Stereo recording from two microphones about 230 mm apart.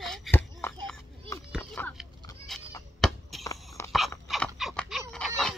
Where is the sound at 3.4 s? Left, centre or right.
Centre.